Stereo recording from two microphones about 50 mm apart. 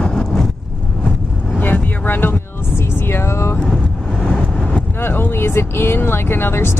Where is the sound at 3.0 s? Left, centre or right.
Left.